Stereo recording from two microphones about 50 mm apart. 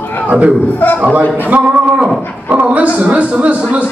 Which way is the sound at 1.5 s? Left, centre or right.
Right.